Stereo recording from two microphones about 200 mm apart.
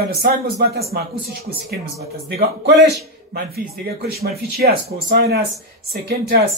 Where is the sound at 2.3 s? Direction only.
60° right (ahead or behind).